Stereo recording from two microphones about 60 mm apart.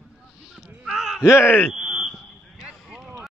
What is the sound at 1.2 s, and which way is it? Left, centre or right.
Speech, left.